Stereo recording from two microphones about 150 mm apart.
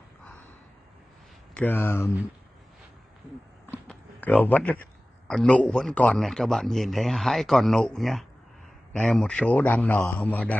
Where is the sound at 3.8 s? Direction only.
10° left (ahead or behind).